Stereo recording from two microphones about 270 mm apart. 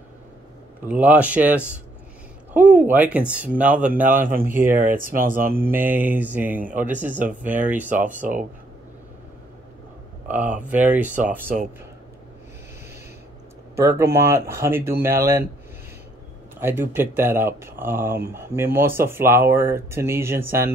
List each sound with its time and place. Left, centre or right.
0.8 s speech: centre
4.6 s speech: right
5.6 s speech: centre
8.2 s speech: right
10.3 s speech: centre
11.4 s speech: right
13.7 s speech: centre
16.5 s speech: centre